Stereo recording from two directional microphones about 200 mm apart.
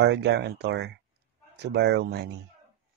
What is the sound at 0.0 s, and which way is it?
Speech, 60° right (ahead or behind).